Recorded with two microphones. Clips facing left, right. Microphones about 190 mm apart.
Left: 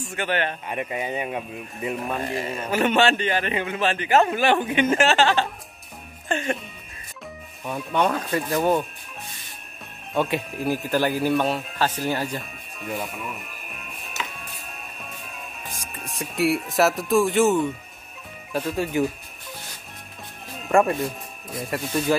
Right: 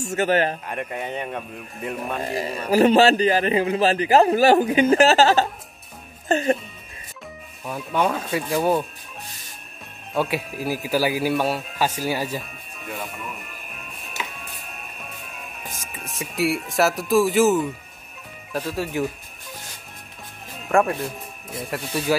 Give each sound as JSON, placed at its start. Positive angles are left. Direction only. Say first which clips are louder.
{"t": 0.0, "sound": "a man's voice", "louder": "right 5 dB", "side_deg": -40}
{"t": 0.7, "sound": "speech", "louder": "left 1 dB", "side_deg": 0}
{"t": 2.2, "sound": "a man's voice", "louder": "right 2 dB", "side_deg": -35}
{"t": 7.6, "sound": "speech", "louder": "even", "side_deg": -5}
{"t": 10.1, "sound": "speech", "louder": "even", "side_deg": -5}
{"t": 15.7, "sound": "speech", "louder": "even", "side_deg": 0}
{"t": 20.6, "sound": "speech", "louder": "left 1 dB", "side_deg": 0}